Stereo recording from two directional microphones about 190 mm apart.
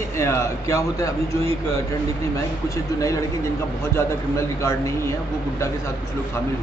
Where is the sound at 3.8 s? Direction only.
15° left (ahead or behind).